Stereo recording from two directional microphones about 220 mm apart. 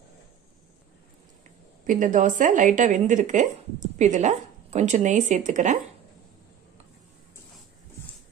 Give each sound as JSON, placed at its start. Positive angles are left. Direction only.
{"t": 1.9, "sound": "speech", "side_deg": -35}